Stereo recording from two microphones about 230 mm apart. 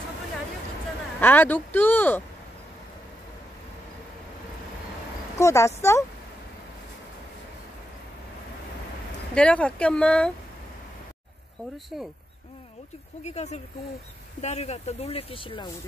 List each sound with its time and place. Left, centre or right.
1.2 s speech: centre
5.4 s speech: centre
9.3 s speech: centre
13.2 s speech: left